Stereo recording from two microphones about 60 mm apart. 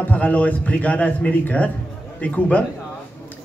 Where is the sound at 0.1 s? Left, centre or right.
Left.